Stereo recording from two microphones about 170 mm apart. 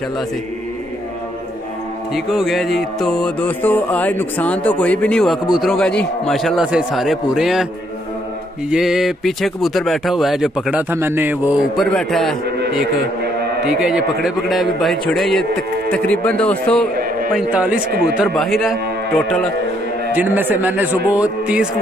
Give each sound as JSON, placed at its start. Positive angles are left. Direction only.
{"t": 2.1, "sound": "speech", "side_deg": 0}
{"t": 8.6, "sound": "speech", "side_deg": -5}
{"t": 12.4, "sound": "a sound", "side_deg": -75}
{"t": 13.7, "sound": "a man's voice", "side_deg": -5}
{"t": 17.3, "sound": "a man's voice", "side_deg": -5}
{"t": 20.2, "sound": "a man's voice", "side_deg": -10}